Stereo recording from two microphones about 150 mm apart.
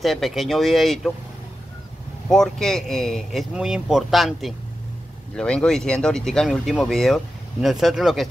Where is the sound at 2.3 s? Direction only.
Centre (ahead or behind).